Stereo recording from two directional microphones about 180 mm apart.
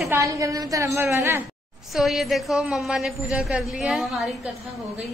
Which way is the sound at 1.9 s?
Centre (ahead or behind).